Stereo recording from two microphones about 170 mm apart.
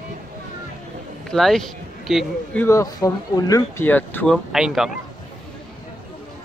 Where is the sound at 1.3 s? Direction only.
Centre (ahead or behind).